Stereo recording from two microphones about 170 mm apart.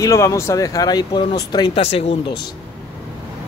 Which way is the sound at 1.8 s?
35° left (ahead or behind).